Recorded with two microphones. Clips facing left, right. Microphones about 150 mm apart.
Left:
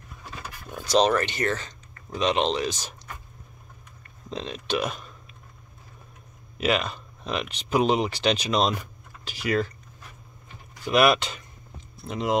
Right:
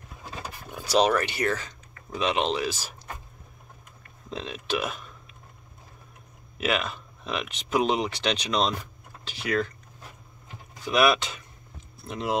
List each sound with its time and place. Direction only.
0.7 s speech: 10° right (ahead or behind)
4.3 s speech: 5° right (ahead or behind)
6.6 s speech: centre (ahead or behind)
10.8 s speech: centre (ahead or behind)